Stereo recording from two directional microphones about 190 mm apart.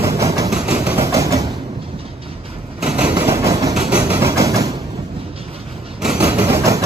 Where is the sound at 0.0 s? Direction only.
15° right (ahead or behind).